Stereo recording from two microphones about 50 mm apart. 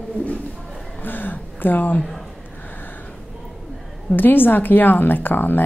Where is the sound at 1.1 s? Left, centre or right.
Left.